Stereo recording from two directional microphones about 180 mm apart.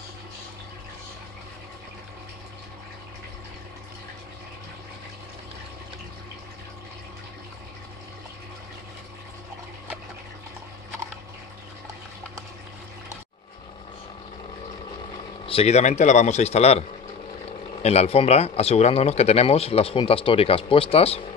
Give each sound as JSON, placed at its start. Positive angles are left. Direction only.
{"t": 15.4, "sound": "speech", "side_deg": 35}
{"t": 17.8, "sound": "speech", "side_deg": 35}